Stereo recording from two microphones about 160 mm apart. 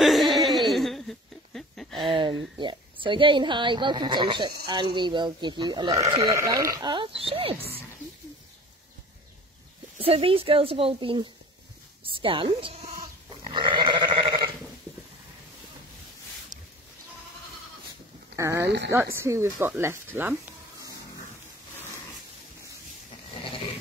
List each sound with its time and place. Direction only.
0.0 s laughter: centre (ahead or behind)
2.0 s speech: 30° right (ahead or behind)
9.9 s a woman's voice: 35° right (ahead or behind)
13.5 s goat: 30° right (ahead or behind)
18.3 s a sound: 20° right (ahead or behind)
18.9 s speech: 15° right (ahead or behind)